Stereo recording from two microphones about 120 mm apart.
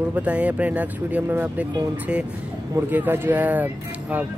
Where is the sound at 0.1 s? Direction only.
10° right (ahead or behind).